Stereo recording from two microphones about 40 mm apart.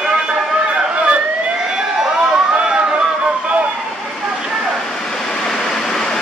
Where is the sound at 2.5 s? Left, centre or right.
Right.